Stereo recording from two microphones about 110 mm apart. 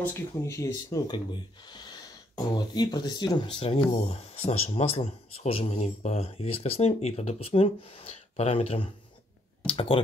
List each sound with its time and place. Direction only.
0.4 s speech: 30° left (ahead or behind)
3.5 s speech: 60° left (ahead or behind)
9.7 s speech: 60° left (ahead or behind)